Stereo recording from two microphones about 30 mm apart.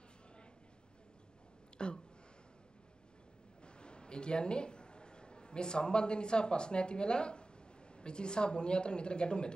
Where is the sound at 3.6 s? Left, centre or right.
Left.